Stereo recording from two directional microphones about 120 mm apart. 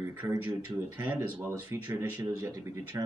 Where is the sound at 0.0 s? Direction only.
20° right (ahead or behind).